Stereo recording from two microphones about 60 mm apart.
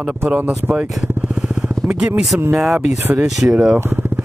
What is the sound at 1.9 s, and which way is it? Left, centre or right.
Speech, centre.